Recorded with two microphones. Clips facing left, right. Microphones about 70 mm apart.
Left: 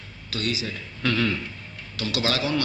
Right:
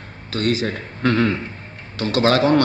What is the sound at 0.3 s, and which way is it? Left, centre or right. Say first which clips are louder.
A man's voice: right 8 dB; right.